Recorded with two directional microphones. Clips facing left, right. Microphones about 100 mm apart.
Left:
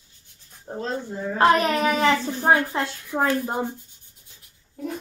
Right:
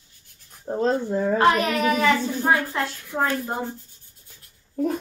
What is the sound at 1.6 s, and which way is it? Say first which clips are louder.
Speech: even; 30° left (ahead or behind).